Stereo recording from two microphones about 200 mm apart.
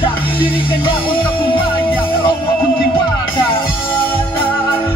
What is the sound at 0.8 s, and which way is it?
Music, 25° left (ahead or behind).